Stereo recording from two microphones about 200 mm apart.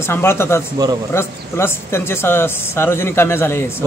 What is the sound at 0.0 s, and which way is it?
Speech, 10° left (ahead or behind).